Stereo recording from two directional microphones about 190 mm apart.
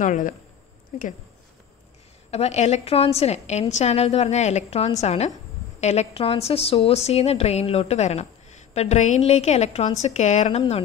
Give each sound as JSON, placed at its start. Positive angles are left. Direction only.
{"t": 0.0, "sound": "speech", "side_deg": 45}
{"t": 2.3, "sound": "a woman's voice", "side_deg": 35}